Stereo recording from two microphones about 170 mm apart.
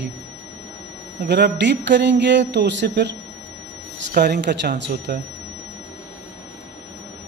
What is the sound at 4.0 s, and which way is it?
Speech, 65° right (ahead or behind).